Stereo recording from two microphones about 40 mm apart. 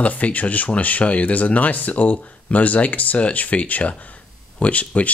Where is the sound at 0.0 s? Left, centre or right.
Left.